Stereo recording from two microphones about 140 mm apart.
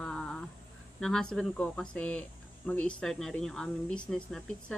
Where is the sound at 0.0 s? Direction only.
5° left (ahead or behind).